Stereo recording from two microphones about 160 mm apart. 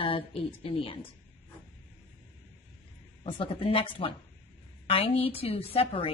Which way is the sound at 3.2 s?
35° left (ahead or behind).